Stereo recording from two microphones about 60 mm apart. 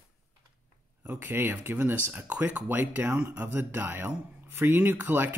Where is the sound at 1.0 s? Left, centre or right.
Right.